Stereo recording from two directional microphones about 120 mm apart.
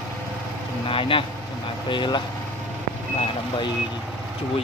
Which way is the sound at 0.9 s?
50° left (ahead or behind).